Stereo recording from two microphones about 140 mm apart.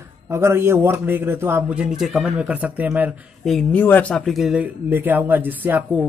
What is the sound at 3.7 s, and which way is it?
A man's voice, 10° left (ahead or behind).